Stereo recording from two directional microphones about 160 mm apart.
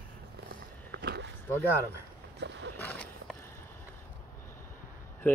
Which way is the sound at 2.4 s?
90° right.